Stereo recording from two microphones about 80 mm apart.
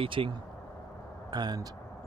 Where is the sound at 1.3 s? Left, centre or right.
Right.